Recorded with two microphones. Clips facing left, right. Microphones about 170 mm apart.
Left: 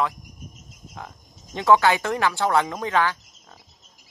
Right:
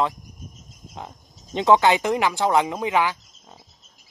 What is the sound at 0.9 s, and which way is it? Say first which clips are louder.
Speech: right 2 dB; 20° right (ahead or behind).